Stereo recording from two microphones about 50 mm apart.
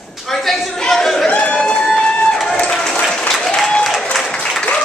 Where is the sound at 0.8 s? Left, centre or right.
Centre.